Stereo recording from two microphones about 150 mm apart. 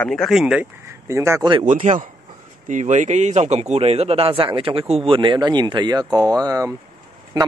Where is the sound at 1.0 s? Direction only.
20° right (ahead or behind).